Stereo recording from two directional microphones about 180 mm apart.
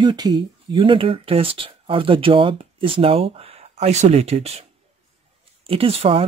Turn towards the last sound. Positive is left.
turn(degrees=-30)  # may be behind; listen again after turning